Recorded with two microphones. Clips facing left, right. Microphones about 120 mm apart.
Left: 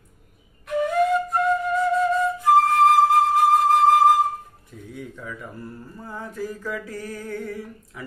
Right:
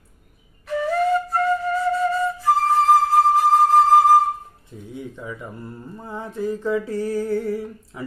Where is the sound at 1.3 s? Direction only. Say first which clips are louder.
Even; centre (ahead or behind).